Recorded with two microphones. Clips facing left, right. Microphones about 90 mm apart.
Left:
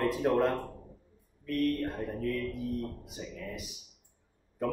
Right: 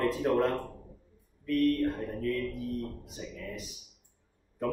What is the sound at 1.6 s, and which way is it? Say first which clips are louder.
Speech: right 3 dB; 15° left (ahead or behind).